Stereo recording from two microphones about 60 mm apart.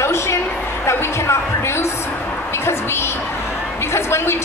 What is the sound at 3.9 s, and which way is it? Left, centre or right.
Speech, left.